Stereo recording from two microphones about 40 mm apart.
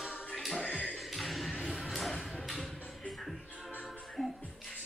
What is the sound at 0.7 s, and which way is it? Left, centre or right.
Music, left.